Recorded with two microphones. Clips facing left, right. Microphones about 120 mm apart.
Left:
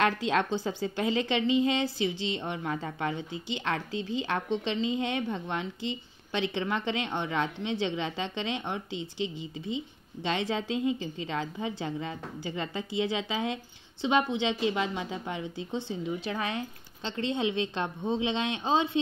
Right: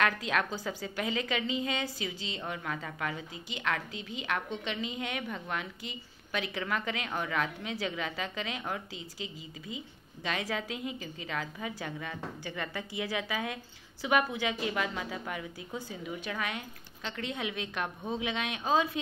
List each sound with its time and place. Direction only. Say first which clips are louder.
0.0 s a woman's voice: left 3 dB; 25° left (ahead or behind)